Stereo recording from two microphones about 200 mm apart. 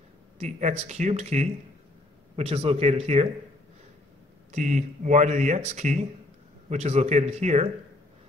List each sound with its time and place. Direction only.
0.4 s speech: 35° right (ahead or behind)
4.5 s speech: 35° right (ahead or behind)